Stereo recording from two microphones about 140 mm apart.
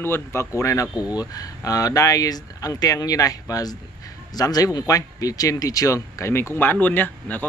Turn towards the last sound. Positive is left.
turn(degrees=10)  # may be behind; listen again after turning